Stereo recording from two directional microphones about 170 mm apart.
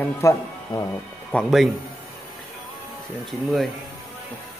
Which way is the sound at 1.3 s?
Centre (ahead or behind).